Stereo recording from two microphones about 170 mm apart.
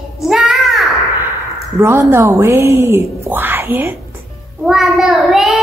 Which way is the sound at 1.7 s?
15° right (ahead or behind).